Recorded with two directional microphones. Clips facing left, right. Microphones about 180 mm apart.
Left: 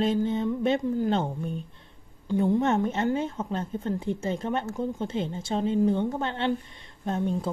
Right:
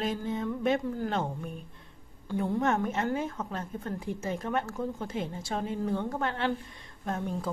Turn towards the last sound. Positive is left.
turn(degrees=25)  # may be behind; listen again after turning